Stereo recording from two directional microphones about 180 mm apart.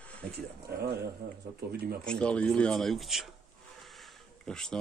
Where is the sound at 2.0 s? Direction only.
5° left (ahead or behind).